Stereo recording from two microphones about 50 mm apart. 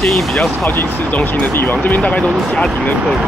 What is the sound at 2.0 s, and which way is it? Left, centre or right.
Speech, left.